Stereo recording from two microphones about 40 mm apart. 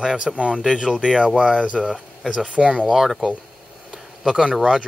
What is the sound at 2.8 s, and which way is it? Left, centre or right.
Speech, centre.